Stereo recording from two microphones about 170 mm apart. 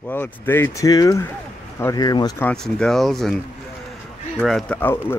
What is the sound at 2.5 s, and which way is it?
Speech, 5° left (ahead or behind).